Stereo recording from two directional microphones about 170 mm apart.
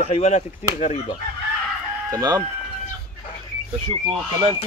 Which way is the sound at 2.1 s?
20° right (ahead or behind).